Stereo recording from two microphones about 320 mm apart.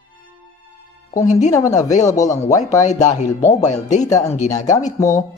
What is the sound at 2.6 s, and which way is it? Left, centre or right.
Speech, left.